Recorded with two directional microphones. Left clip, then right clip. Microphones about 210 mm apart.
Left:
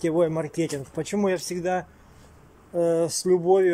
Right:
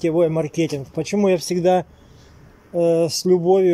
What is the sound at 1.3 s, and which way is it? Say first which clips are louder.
Speech: right 9 dB; 20° right (ahead or behind).